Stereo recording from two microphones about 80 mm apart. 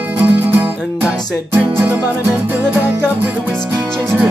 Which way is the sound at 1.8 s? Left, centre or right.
Centre.